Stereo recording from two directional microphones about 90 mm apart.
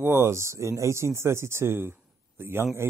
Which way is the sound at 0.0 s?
30° right (ahead or behind).